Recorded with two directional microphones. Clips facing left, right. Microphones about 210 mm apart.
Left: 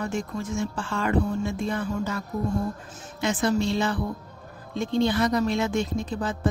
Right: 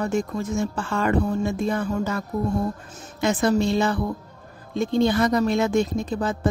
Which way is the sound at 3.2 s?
40° right (ahead or behind).